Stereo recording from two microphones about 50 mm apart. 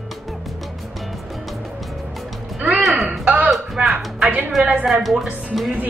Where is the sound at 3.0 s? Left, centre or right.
Right.